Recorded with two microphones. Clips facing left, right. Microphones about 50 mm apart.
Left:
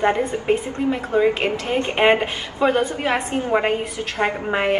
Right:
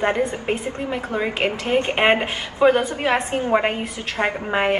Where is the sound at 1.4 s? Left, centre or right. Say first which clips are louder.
Right 1 dB; right; by 3.3 s centre.